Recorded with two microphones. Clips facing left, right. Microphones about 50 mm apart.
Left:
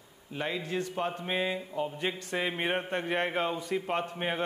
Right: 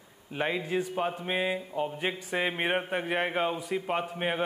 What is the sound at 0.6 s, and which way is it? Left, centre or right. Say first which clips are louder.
Speech: right 3 dB; centre.